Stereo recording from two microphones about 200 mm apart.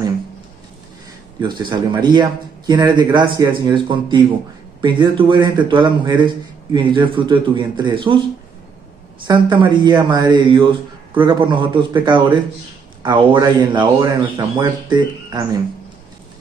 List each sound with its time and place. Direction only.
1.4 s a man's voice: 20° right (ahead or behind)
9.2 s a man's voice: 25° right (ahead or behind)